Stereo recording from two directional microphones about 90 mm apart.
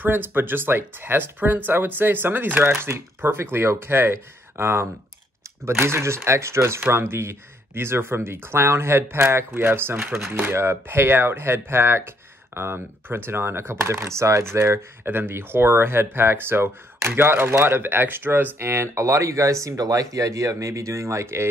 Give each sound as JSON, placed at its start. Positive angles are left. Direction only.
{"t": 0.0, "sound": "speech", "side_deg": -25}